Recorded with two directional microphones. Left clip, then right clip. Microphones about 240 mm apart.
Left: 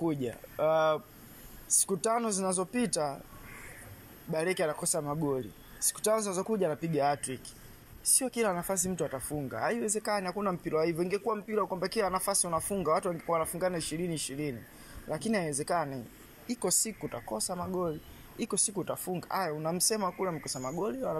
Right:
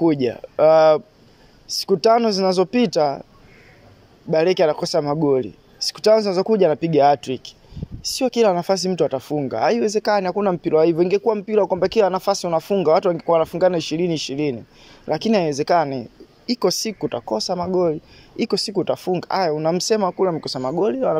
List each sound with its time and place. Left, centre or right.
0.0 s speech: right
2.0 s speech: right
4.3 s speech: right
6.1 s speech: right
6.4 s speech: right